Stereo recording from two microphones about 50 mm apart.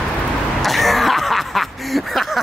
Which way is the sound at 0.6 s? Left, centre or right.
Centre.